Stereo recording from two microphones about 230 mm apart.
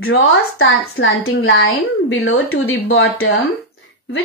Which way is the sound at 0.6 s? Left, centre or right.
Left.